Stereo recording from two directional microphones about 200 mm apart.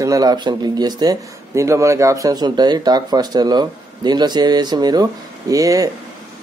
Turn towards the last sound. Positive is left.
turn(degrees=-15)  # may be behind; listen again after turning